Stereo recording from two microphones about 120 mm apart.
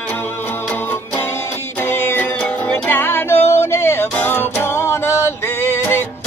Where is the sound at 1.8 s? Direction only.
20° left (ahead or behind).